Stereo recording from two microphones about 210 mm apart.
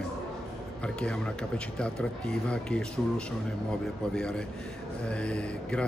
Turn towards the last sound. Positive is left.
turn(degrees=5)  # may be behind; listen again after turning